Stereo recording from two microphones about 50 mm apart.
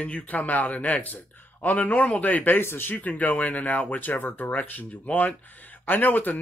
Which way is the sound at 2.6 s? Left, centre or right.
Left.